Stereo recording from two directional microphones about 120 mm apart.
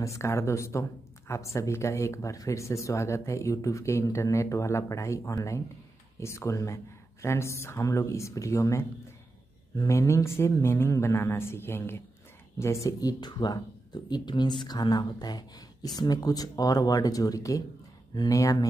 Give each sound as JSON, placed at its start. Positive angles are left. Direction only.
{"t": 0.0, "sound": "speech", "side_deg": 25}